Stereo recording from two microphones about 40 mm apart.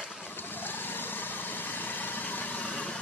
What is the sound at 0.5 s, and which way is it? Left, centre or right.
Vehicle, left.